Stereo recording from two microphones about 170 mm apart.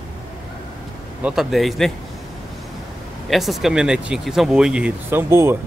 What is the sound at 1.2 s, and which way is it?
Speech, centre (ahead or behind).